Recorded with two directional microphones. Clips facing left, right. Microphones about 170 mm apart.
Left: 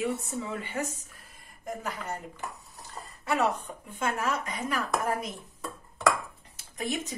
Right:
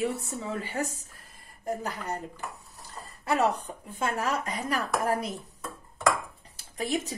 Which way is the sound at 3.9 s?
35° right (ahead or behind).